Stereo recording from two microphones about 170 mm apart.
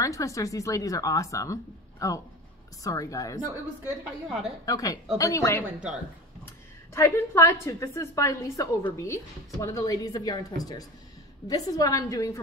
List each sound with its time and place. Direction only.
0.0 s speech: 20° left (ahead or behind)
3.6 s a woman's voice: 5° right (ahead or behind)
4.6 s speech: 20° left (ahead or behind)
6.9 s speech: 15° left (ahead or behind)